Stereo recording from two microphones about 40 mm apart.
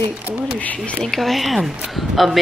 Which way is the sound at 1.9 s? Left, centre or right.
Centre.